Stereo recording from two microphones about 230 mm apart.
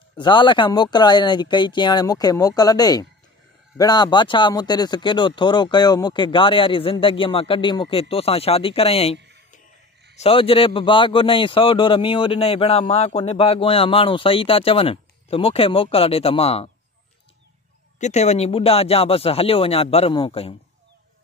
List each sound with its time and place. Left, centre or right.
0.2 s a man's voice: left
17.9 s a man's voice: left